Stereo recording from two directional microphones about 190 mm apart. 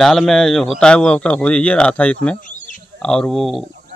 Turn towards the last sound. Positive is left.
turn(degrees=0)  # may be behind; listen again after turning